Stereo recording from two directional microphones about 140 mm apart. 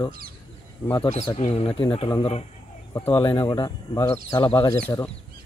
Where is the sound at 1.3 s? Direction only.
45° left (ahead or behind).